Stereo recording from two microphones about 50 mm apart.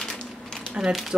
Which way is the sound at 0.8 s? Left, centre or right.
Right.